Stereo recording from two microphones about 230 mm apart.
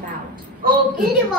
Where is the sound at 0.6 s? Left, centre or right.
Right.